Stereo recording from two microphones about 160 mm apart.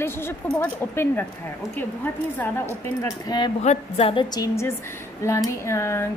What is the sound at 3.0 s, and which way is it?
Speech, 25° left (ahead or behind).